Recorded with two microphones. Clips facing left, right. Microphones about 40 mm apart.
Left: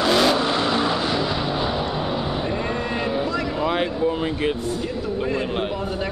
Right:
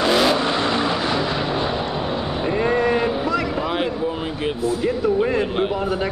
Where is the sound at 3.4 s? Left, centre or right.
Centre.